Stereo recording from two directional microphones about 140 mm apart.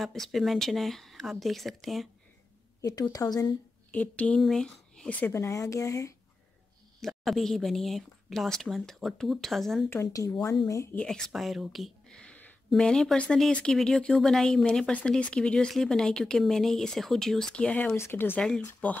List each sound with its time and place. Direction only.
0.0 s speech: centre (ahead or behind)
2.8 s a woman's voice: 25° left (ahead or behind)
3.9 s speech: 10° left (ahead or behind)
5.3 s a woman's voice: 20° left (ahead or behind)
7.0 s speech: centre (ahead or behind)
9.8 s a woman's voice: 20° left (ahead or behind)
11.0 s speech: 5° left (ahead or behind)